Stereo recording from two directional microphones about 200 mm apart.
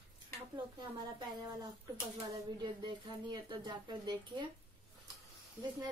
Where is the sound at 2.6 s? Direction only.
20° right (ahead or behind).